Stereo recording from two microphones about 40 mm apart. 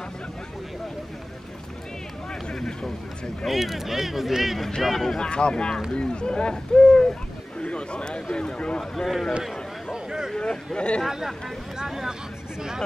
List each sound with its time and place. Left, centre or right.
2.5 s a sound: centre
3.4 s speech: centre
4.8 s speech: centre
5.2 s a man's voice: left
8.9 s speech: centre
9.9 s a sound: centre
10.3 s a man's voice: centre
11.1 s speech: centre